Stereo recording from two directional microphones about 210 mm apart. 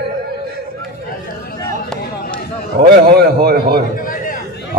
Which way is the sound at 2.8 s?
50° right (ahead or behind).